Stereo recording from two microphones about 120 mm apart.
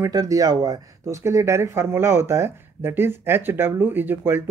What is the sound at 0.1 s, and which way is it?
Speech, 30° right (ahead or behind).